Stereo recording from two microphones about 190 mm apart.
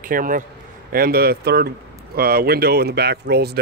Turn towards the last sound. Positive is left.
turn(degrees=-60)  # may be behind; listen again after turning